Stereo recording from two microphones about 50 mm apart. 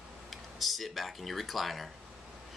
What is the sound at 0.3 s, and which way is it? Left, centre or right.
Speech, centre.